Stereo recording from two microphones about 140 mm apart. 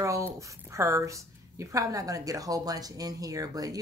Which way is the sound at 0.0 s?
20° right (ahead or behind).